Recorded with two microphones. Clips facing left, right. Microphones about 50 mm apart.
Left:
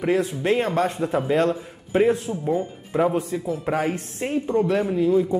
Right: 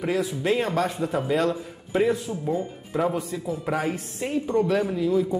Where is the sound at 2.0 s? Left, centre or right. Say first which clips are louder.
Left 3 dB; left.